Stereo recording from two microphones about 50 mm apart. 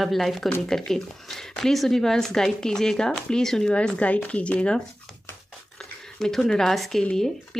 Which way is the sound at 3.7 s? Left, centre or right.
Left.